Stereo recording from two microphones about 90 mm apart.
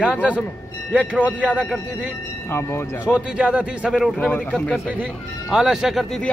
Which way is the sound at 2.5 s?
25° left (ahead or behind).